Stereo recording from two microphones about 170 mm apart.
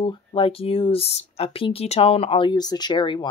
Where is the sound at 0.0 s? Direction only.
30° left (ahead or behind).